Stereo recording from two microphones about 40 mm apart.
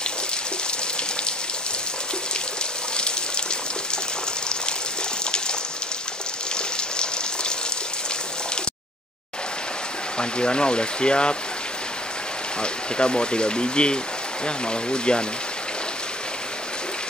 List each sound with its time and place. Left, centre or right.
6.5 s raindrop: left
10.1 s speech: left
12.6 s speech: left